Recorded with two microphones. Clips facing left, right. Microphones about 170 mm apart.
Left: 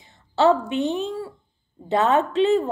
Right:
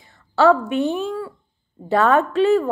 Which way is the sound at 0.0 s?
20° left (ahead or behind).